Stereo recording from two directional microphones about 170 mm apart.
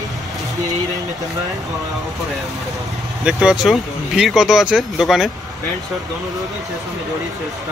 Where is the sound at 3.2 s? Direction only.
5° right (ahead or behind).